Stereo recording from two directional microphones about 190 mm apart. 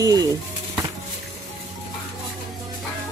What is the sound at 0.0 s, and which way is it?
Speech, 20° right (ahead or behind).